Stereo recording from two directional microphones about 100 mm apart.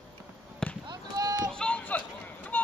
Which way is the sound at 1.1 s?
40° right (ahead or behind).